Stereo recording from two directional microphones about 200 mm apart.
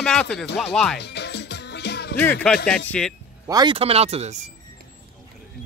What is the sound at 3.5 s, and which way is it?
Speech, 20° right (ahead or behind).